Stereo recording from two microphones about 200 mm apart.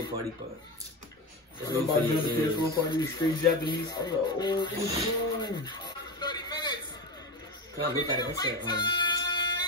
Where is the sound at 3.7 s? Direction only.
20° left (ahead or behind).